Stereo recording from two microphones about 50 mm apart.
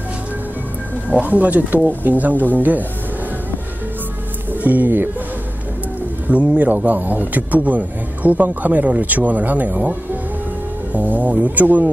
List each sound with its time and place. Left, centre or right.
1.0 s speech: right
4.6 s speech: right
6.2 s speech: right